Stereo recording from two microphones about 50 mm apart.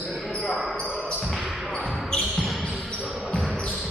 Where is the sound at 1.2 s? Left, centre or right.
Centre.